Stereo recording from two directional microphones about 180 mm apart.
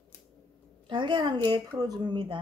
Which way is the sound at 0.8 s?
25° right (ahead or behind).